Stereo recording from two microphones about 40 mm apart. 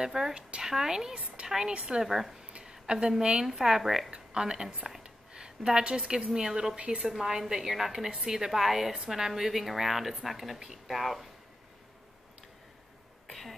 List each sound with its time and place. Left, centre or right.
0.0 s a woman's voice: centre
2.0 s speech: centre
2.6 s a woman's voice: centre
4.1 s speech: right
5.0 s a sound: right
5.7 s a woman's voice: centre
13.3 s a sound: centre